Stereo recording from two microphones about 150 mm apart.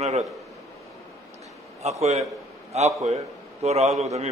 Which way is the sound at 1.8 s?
45° right (ahead or behind).